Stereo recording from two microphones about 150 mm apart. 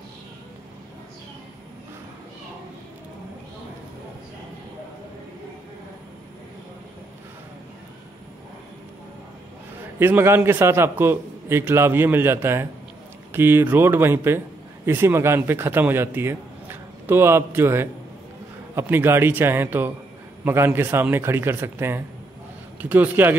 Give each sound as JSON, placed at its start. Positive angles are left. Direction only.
{"t": 9.9, "sound": "a man's voice", "side_deg": -15}